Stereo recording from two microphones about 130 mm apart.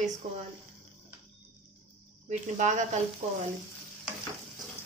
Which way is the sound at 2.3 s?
65° right (ahead or behind).